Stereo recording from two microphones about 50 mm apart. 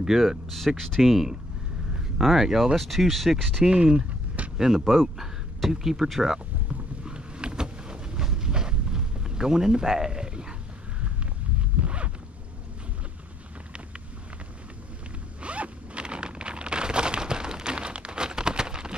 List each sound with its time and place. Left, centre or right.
0.0 s speech: centre
1.0 s speech: centre
3.6 s speech: centre
7.1 s vehicle: centre
11.8 s zipper: right
15.4 s zipper: right